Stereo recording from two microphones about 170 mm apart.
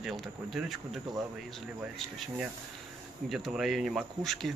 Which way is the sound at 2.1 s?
5° right (ahead or behind).